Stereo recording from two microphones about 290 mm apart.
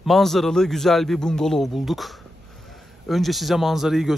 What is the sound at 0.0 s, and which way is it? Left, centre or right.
Speech, centre.